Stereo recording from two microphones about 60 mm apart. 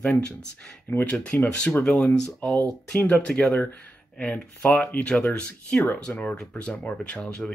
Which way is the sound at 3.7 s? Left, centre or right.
Left.